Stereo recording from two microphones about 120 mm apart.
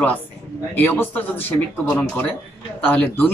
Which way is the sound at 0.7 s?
15° left (ahead or behind).